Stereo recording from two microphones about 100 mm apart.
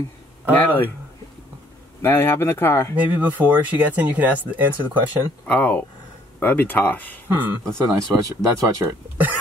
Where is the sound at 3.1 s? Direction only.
20° right (ahead or behind).